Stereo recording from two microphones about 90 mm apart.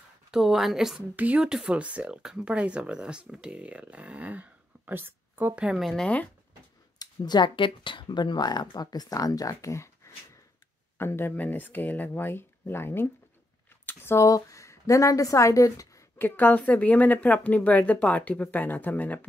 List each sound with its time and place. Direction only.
0.3 s a woman's voice: 5° right (ahead or behind)
1.1 s speech: 15° right (ahead or behind)
5.8 s a woman's voice: centre (ahead or behind)
7.0 s a woman's voice: 50° left (ahead or behind); by 16.1 s 35° left (ahead or behind)
16.2 s speech: 20° left (ahead or behind)